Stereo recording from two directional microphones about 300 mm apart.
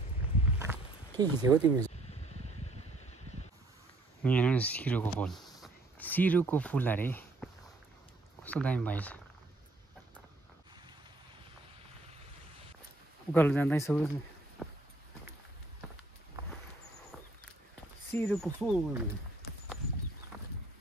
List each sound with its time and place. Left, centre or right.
0.6 s wild animals: centre
2.0 s a sound: left
4.2 s speech: centre
8.5 s speech: centre
13.3 s speech: centre
14.6 s a sound: centre
18.1 s speech: centre